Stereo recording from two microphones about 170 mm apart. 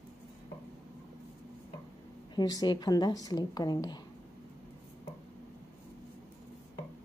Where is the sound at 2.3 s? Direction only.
25° left (ahead or behind).